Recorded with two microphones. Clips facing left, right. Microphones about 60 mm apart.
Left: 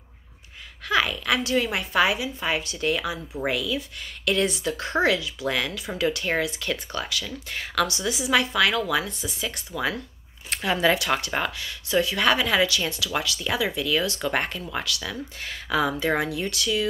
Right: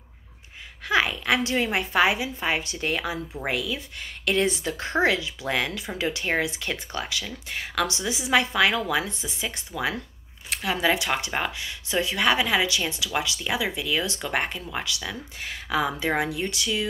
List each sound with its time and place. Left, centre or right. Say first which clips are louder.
0.8 s speech: even; right
10.5 s speech: left 2 dB; centre